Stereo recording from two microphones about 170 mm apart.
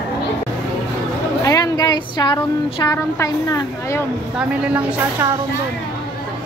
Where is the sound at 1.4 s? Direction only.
20° left (ahead or behind).